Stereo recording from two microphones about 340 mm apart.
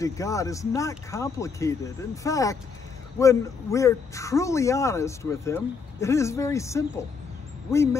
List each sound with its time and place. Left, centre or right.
0.0 s speech: centre